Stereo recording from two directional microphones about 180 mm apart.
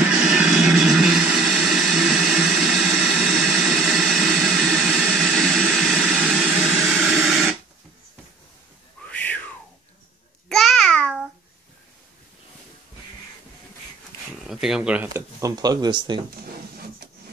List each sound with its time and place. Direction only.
0.0 s vehicle: 5° right (ahead or behind)
6.6 s a sound: centre (ahead or behind)
9.0 s a sound: 10° left (ahead or behind)
10.5 s babbling: centre (ahead or behind)
14.4 s speech: centre (ahead or behind)
15.4 s speech: 20° right (ahead or behind)